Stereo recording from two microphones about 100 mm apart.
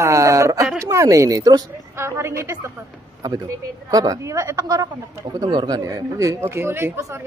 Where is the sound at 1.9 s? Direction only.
25° right (ahead or behind).